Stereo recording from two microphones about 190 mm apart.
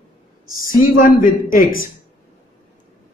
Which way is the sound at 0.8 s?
45° left (ahead or behind).